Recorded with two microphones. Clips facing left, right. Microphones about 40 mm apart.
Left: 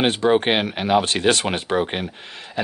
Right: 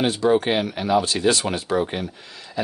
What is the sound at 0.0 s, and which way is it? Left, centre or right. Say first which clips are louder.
Speech: left 1 dB; left.